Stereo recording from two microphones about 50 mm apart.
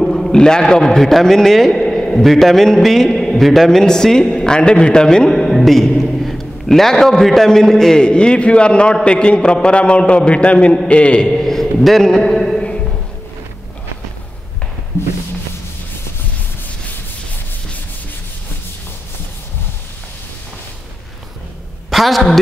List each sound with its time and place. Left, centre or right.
0.0 s a man's voice: centre
11.3 s a sound: centre
21.9 s a woman's voice: centre